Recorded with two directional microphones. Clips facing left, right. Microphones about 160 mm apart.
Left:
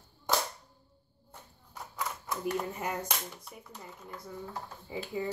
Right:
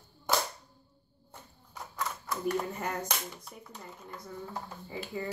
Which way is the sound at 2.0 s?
20° left (ahead or behind).